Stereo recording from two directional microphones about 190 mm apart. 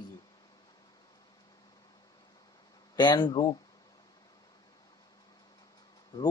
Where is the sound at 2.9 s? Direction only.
20° left (ahead or behind).